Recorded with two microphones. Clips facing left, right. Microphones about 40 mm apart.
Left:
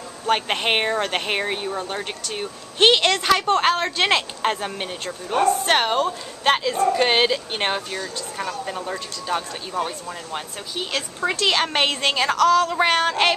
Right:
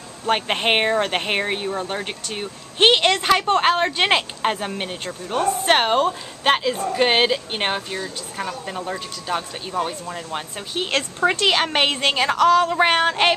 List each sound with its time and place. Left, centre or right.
0.3 s speech: centre
4.4 s speech: centre
10.7 s a woman's voice: right
11.4 s a woman's voice: centre